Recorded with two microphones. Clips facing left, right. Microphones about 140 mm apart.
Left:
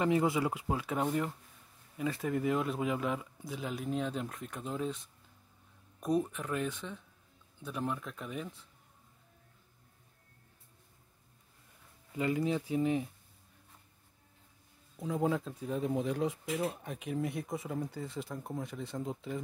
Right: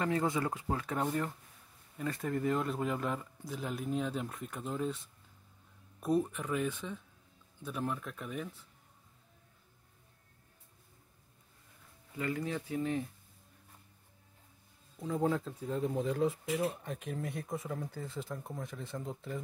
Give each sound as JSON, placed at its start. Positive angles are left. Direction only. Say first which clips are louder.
{"t": 0.0, "sound": "speech", "louder": "left 3 dB", "side_deg": 15}
{"t": 6.0, "sound": "speech", "louder": "even", "side_deg": -5}
{"t": 12.2, "sound": "speech", "louder": "left 4 dB", "side_deg": 20}
{"t": 15.0, "sound": "speech", "louder": "even", "side_deg": 5}